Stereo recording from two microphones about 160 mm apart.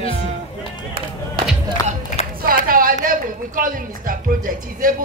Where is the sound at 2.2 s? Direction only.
40° left (ahead or behind).